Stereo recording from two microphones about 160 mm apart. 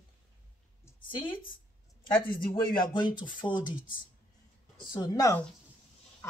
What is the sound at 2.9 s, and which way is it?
Speech, 30° left (ahead or behind).